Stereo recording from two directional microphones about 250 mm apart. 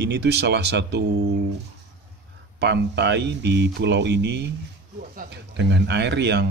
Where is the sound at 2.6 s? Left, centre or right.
Right.